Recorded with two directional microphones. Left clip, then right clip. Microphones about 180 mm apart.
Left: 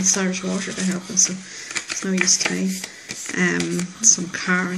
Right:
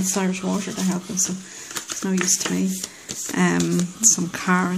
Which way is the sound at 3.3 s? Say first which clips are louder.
Even; 55° right (ahead or behind).